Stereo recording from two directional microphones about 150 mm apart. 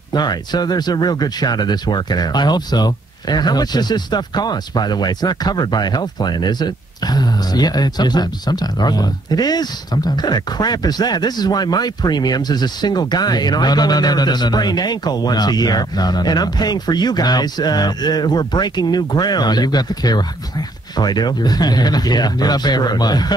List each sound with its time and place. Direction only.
0.1 s speech: 30° left (ahead or behind)